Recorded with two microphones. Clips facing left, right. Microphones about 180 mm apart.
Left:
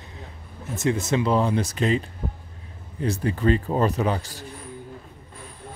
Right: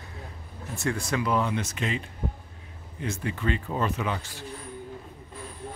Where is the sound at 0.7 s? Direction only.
20° left (ahead or behind); by 4.4 s 40° left (ahead or behind).